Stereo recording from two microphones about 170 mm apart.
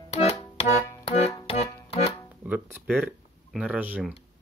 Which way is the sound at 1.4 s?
35° left (ahead or behind).